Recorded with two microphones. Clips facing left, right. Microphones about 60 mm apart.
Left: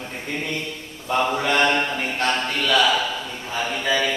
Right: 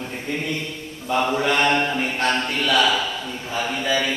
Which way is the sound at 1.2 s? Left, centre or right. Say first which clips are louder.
Even; centre.